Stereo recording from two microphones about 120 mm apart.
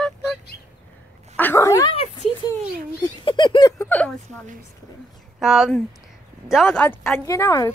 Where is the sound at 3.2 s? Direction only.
45° left (ahead or behind).